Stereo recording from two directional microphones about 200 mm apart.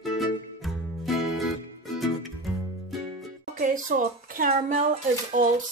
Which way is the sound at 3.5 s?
40° right (ahead or behind).